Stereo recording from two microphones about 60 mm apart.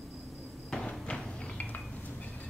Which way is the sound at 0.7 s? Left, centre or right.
Centre.